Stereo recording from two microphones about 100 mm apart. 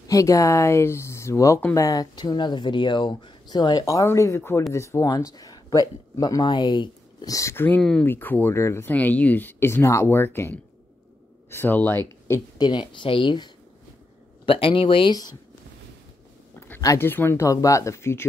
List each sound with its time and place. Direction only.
0.1 s speech: 35° left (ahead or behind)
1.9 s speech: 40° left (ahead or behind)
5.1 s speech: 40° left (ahead or behind)
7.2 s speech: 35° left (ahead or behind)
7.5 s speech: 20° left (ahead or behind)
8.9 s speech: 15° left (ahead or behind)
12.5 s speech: 50° left (ahead or behind)
14.4 s speech: 65° left (ahead or behind)
16.5 s a sound: 20° left (ahead or behind)
16.8 s speech: 30° left (ahead or behind)